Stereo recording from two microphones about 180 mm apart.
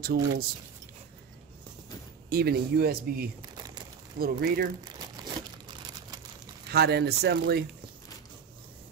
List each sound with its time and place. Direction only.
0.0 s speech: 60° right (ahead or behind)
2.2 s speech: 60° right (ahead or behind)
3.5 s crumpling: 20° right (ahead or behind)
4.2 s speech: 55° right (ahead or behind)
6.7 s speech: 65° right (ahead or behind)